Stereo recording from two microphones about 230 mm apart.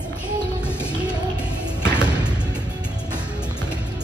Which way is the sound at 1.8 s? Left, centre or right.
Centre.